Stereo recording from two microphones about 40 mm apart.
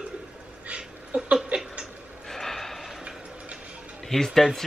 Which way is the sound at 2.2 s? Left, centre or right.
Centre.